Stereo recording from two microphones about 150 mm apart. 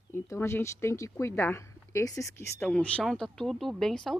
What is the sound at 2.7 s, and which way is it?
Speech, 5° left (ahead or behind).